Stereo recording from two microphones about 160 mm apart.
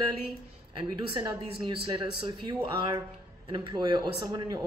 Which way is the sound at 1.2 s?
25° right (ahead or behind).